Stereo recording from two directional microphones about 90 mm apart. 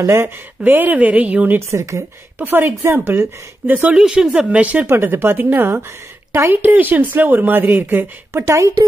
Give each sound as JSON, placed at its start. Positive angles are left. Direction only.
{"t": 0.0, "sound": "speech", "side_deg": -30}
{"t": 0.6, "sound": "a woman's voice", "side_deg": -20}
{"t": 1.7, "sound": "a woman's voice", "side_deg": -30}
{"t": 3.9, "sound": "speech", "side_deg": -10}